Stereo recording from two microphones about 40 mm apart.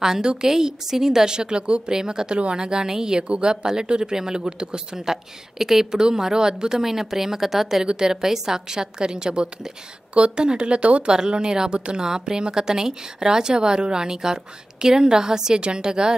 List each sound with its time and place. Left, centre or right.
0.0 s speech: centre